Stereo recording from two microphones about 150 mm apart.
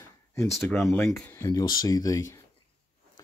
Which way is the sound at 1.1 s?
10° left (ahead or behind).